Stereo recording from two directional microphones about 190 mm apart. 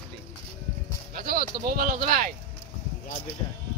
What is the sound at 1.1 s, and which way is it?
Speech, 50° right (ahead or behind).